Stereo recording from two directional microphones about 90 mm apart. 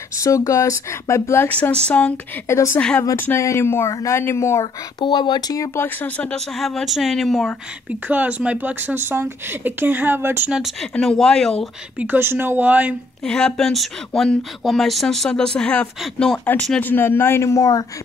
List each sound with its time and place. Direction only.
0.2 s speech: 35° left (ahead or behind)
1.7 s speech: 15° left (ahead or behind)
2.4 s speech: 30° left (ahead or behind)
5.0 s speech: 60° left (ahead or behind)
5.9 s speech: 15° left (ahead or behind); by 7.5 s centre (ahead or behind)
7.9 s speech: 15° right (ahead or behind)
10.5 s speech: 5° right (ahead or behind)
12.0 s speech: 25° right (ahead or behind)
13.2 s speech: 10° left (ahead or behind); by 17.8 s 35° left (ahead or behind)